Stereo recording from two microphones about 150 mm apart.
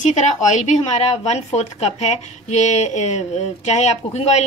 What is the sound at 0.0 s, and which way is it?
Speech, 55° left (ahead or behind).